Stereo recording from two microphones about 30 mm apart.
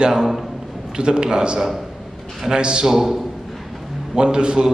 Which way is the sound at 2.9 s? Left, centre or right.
Centre.